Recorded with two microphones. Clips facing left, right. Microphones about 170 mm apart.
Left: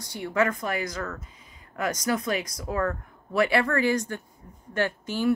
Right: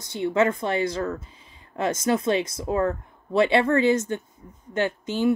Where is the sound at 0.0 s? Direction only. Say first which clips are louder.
Right 4 dB; 25° right (ahead or behind).